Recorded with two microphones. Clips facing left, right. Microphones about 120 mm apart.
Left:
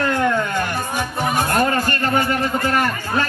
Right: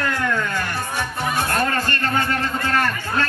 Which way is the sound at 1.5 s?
15° left (ahead or behind).